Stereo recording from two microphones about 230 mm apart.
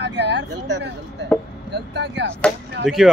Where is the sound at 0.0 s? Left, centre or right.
Right.